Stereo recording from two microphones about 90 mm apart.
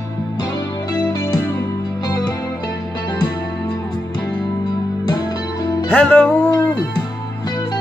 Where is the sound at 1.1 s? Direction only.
50° left (ahead or behind).